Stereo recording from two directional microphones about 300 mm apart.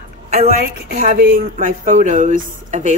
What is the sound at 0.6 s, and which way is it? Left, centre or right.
Speech, right.